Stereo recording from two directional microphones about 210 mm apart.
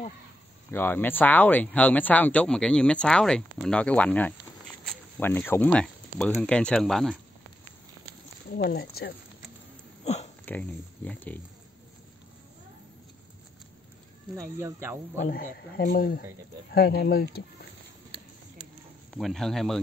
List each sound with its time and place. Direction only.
0.7 s speech: 10° left (ahead or behind)
8.5 s speech: 50° left (ahead or behind)
10.0 s dog: 30° left (ahead or behind)
10.4 s speech: 5° left (ahead or behind)
14.3 s speech: 15° right (ahead or behind)
15.2 s speech: 45° left (ahead or behind)
19.0 s speech: centre (ahead or behind)